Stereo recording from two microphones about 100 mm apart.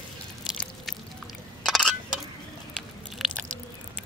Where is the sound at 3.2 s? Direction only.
Centre (ahead or behind).